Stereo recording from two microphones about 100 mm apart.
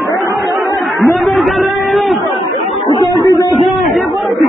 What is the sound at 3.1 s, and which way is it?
Music, 35° left (ahead or behind).